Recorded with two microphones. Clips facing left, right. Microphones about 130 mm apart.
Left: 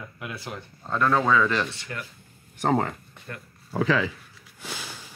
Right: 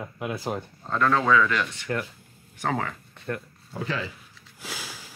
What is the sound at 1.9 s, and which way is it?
Speech, 40° right (ahead or behind).